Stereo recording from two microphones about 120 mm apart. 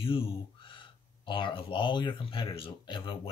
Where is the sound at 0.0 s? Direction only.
50° left (ahead or behind).